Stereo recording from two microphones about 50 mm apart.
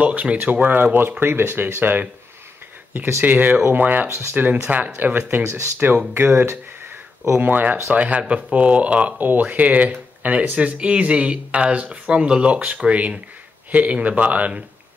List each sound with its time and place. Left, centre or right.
0.0 s speech: right
1.2 s speech: right
7.9 s speech: right